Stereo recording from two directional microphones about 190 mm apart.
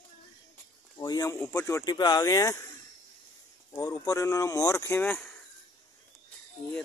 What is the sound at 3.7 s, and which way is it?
Speech, 15° left (ahead or behind).